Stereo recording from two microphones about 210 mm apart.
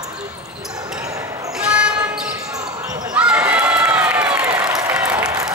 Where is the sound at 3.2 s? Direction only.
5° right (ahead or behind).